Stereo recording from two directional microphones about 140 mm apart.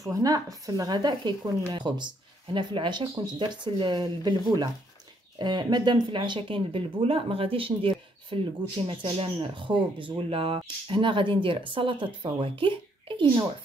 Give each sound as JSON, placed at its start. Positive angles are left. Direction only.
{"t": 0.0, "sound": "speech", "side_deg": -25}